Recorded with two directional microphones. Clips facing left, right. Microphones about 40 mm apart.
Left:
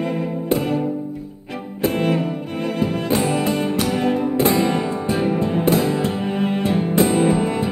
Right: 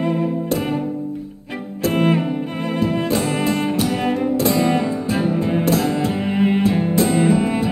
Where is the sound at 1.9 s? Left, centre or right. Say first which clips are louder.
Right 3 dB; right.